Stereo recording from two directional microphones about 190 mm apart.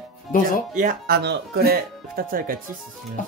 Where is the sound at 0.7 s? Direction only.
50° right (ahead or behind).